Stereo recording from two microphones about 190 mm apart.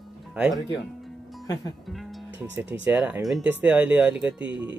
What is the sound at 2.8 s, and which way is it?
Speech, 10° right (ahead or behind).